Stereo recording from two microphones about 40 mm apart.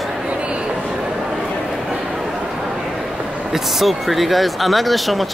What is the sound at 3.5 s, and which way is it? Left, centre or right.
Speech, centre.